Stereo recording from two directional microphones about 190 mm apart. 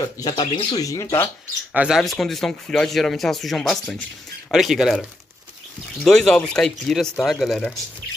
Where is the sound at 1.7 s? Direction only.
5° right (ahead or behind).